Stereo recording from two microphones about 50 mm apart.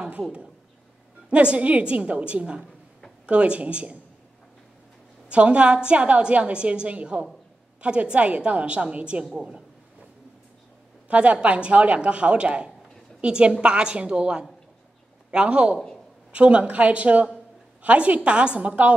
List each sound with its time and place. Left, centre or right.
1.3 s a woman's voice: right
5.3 s a woman's voice: right
11.1 s a woman's voice: right